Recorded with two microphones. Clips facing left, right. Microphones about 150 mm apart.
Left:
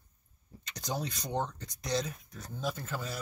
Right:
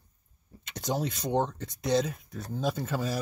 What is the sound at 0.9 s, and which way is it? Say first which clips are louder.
Speech: right 6 dB; 20° right (ahead or behind).